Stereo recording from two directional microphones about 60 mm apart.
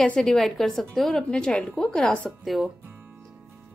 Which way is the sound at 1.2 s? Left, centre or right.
Centre.